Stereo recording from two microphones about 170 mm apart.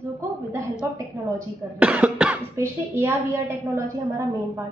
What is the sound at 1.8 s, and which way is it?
Speech, 10° right (ahead or behind).